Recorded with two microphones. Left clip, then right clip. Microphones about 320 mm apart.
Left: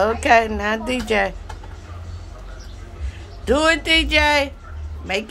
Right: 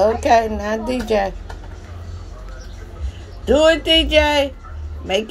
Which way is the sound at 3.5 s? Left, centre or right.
Centre.